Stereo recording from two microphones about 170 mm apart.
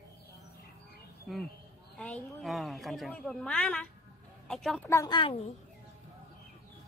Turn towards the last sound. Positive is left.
turn(degrees=30)  # may be behind; listen again after turning